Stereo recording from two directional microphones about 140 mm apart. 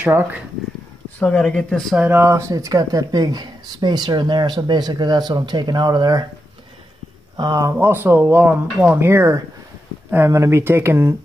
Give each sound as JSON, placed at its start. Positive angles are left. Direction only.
{"t": 0.0, "sound": "speech", "side_deg": -15}
{"t": 1.2, "sound": "speech", "side_deg": 5}
{"t": 2.0, "sound": "speech", "side_deg": -15}
{"t": 7.3, "sound": "speech", "side_deg": -25}
{"t": 7.7, "sound": "speech", "side_deg": -15}